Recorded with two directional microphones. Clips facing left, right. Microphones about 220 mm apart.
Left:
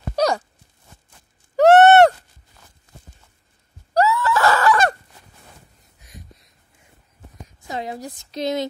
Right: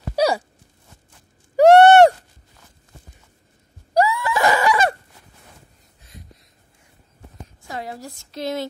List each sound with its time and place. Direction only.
0.1 s sigh: 10° right (ahead or behind)
1.6 s a sound: 15° right (ahead or behind)
3.9 s screaming: 15° right (ahead or behind)
7.6 s a woman's voice: 20° left (ahead or behind)